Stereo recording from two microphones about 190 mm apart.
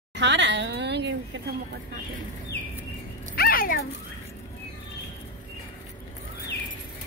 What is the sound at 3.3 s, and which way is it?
Dog, 50° left (ahead or behind).